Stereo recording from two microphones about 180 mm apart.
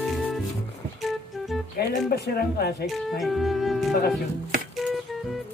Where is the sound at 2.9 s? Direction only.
Centre (ahead or behind).